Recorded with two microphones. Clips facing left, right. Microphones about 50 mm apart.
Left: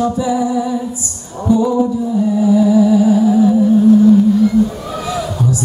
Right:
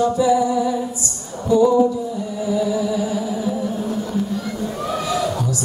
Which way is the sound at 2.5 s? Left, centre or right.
Left.